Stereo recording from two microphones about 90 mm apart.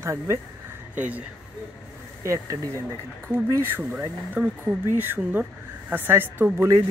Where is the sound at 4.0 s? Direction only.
20° right (ahead or behind).